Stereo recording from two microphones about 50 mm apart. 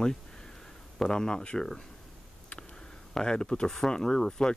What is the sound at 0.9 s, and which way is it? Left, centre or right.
Speech, centre.